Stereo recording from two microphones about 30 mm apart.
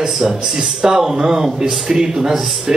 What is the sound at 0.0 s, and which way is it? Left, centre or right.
A man's voice, centre.